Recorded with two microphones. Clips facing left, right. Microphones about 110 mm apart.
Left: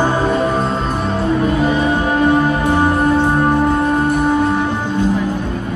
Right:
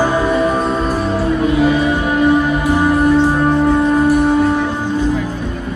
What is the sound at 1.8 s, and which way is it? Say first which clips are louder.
Music: even; 25° left (ahead or behind).